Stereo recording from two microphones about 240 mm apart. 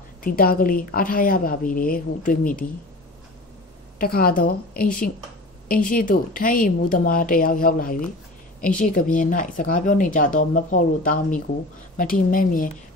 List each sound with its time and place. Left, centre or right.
0.2 s speech: left
4.0 s speech: left